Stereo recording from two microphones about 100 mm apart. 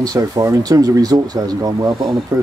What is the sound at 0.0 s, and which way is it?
Speech, 40° right (ahead or behind).